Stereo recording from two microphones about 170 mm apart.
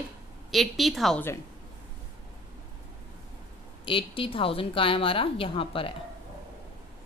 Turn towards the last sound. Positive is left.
turn(degrees=30)  # may be behind; listen again after turning